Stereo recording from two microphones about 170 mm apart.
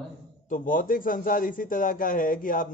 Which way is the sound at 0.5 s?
55° left (ahead or behind).